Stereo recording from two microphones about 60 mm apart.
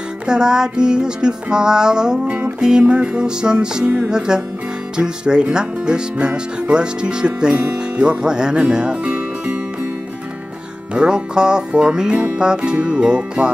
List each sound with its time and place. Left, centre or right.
0.3 s speech: centre
10.9 s speech: centre